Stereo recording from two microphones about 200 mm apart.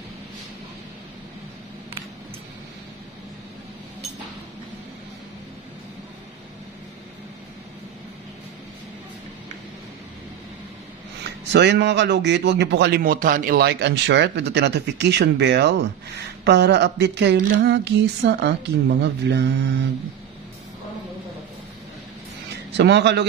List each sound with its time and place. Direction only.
11.2 s a man's voice: 60° right (ahead or behind)
22.8 s a man's voice: 60° right (ahead or behind)